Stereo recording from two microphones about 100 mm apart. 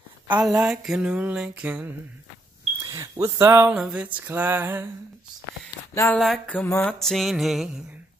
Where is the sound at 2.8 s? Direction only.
35° right (ahead or behind).